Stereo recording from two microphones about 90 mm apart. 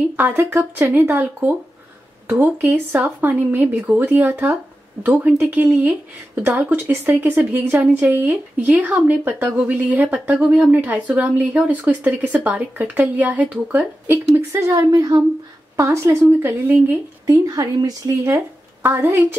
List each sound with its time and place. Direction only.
0.1 s speech: 20° right (ahead or behind)
14.5 s speech: 35° right (ahead or behind)
14.9 s speech: 45° right (ahead or behind)
15.7 s speech: 35° right (ahead or behind)
17.3 s speech: 45° right (ahead or behind)
18.2 s speech: 30° right (ahead or behind)